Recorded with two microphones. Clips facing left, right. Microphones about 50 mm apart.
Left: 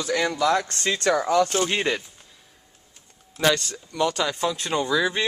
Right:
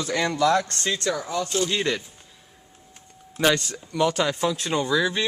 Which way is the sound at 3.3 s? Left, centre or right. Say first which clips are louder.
Even; centre.